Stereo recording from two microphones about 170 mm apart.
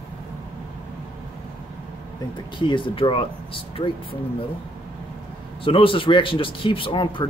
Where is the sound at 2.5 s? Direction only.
30° left (ahead or behind).